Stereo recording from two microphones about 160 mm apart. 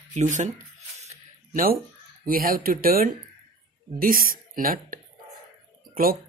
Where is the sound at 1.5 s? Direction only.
60° right (ahead or behind).